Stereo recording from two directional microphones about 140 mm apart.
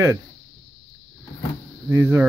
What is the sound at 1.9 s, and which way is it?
Speech, 15° right (ahead or behind).